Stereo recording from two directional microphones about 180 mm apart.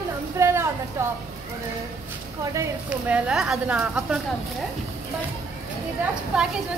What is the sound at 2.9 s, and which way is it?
A woman's voice, 5° right (ahead or behind).